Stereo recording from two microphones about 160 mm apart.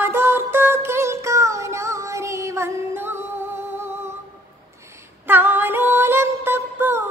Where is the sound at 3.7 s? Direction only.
15° right (ahead or behind).